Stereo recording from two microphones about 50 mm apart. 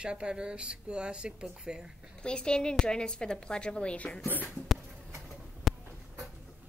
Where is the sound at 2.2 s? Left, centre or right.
Centre.